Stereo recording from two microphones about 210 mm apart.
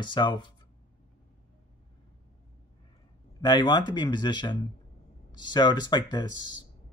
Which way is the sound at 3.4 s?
20° left (ahead or behind).